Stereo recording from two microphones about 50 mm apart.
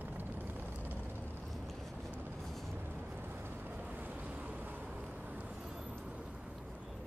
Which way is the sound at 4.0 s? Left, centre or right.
Right.